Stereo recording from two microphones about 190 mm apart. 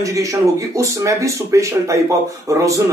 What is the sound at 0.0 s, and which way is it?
Speech, 15° right (ahead or behind).